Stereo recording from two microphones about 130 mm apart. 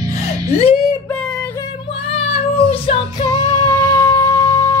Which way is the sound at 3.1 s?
35° left (ahead or behind).